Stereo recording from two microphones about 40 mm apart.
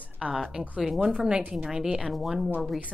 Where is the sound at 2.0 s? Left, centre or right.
Centre.